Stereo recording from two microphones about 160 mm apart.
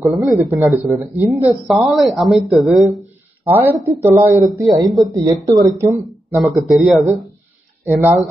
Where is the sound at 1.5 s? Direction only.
Centre (ahead or behind).